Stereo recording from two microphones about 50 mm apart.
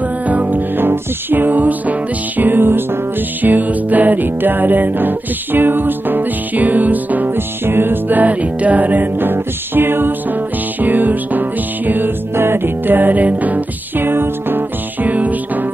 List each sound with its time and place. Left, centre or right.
0.3 s music: right
15.0 s music: right